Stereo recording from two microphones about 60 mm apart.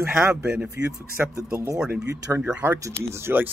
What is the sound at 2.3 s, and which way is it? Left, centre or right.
Speech, centre.